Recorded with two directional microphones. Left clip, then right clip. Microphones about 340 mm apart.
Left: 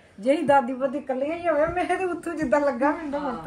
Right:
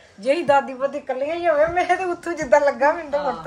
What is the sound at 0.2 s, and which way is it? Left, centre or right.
A woman's voice, right.